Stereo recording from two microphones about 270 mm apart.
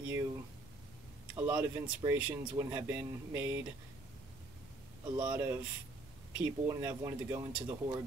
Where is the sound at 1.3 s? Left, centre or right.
Centre.